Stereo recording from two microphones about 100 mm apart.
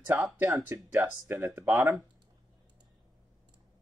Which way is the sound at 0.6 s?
30° right (ahead or behind).